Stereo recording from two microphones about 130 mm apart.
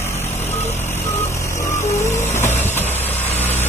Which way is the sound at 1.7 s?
20° left (ahead or behind).